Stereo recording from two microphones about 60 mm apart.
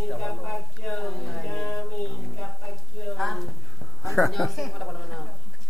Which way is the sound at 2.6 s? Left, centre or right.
Centre.